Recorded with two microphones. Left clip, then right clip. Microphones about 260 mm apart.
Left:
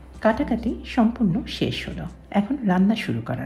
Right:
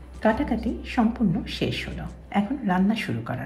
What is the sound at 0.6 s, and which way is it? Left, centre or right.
Speech, centre.